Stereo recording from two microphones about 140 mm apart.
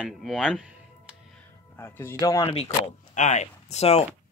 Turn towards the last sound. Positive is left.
turn(degrees=50)  # may be behind; listen again after turning